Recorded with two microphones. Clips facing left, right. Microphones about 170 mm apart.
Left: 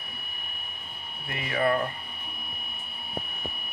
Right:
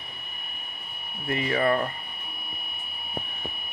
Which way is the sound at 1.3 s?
40° right (ahead or behind).